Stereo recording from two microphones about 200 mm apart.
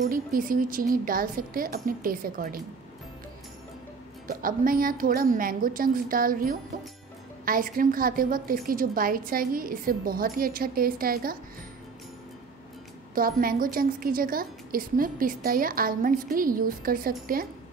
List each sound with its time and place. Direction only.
0.1 s a woman's voice: 45° right (ahead or behind)
4.3 s a woman's voice: 45° right (ahead or behind)
13.1 s a woman's voice: 45° right (ahead or behind)